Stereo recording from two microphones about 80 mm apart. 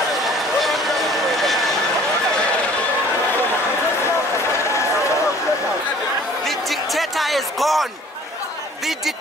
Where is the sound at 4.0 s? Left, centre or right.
Left.